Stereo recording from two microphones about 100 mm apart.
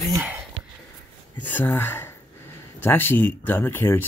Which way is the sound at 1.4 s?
20° left (ahead or behind).